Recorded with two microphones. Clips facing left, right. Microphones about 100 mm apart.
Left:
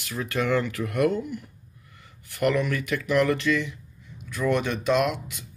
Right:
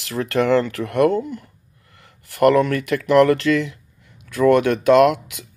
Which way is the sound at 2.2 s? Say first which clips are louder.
Right 9 dB; 80° right.